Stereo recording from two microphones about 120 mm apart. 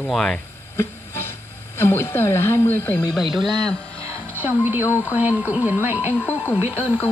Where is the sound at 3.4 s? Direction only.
40° right (ahead or behind).